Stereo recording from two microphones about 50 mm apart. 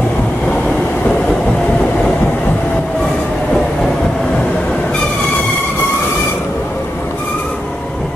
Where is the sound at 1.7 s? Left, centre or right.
Left.